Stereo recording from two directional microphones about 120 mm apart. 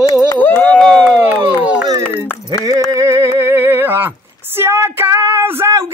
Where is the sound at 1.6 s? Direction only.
10° right (ahead or behind).